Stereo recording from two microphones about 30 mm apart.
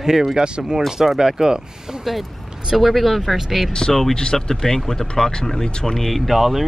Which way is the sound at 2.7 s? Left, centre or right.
Centre.